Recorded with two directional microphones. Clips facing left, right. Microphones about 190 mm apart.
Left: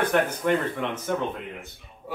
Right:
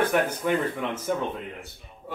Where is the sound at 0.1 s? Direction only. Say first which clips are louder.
Left 1 dB; 5° right (ahead or behind).